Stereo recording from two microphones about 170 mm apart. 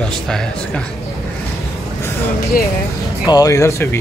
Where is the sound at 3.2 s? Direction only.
20° left (ahead or behind).